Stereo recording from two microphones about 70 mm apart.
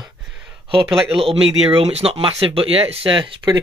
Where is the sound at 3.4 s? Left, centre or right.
Right.